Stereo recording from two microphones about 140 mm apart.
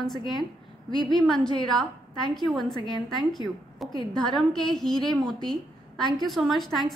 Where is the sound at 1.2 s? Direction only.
5° left (ahead or behind).